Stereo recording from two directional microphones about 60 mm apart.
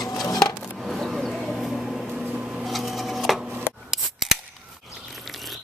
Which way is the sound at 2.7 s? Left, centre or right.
Centre.